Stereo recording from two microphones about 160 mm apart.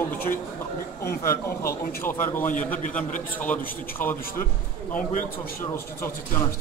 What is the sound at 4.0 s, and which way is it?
Speech, 10° left (ahead or behind).